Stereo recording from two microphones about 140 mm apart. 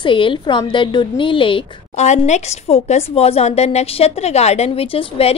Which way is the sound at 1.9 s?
55° left (ahead or behind).